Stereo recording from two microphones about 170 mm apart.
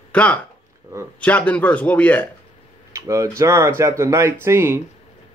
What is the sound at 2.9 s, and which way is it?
Speech, 20° right (ahead or behind).